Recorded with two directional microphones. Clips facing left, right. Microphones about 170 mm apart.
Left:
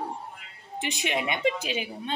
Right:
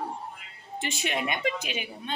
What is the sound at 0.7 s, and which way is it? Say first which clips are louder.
A woman's voice: left 1 dB; 15° left (ahead or behind).